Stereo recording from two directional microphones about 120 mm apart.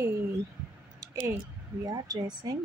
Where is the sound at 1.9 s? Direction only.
30° right (ahead or behind).